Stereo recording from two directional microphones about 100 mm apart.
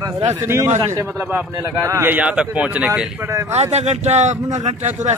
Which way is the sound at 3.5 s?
90° right.